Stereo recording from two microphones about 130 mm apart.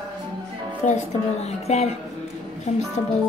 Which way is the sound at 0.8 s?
60° left (ahead or behind).